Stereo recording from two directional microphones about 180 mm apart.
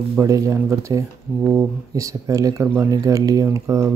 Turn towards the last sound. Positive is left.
turn(degrees=-15)  # may be behind; listen again after turning